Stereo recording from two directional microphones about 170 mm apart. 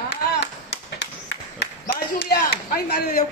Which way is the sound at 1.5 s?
80° left.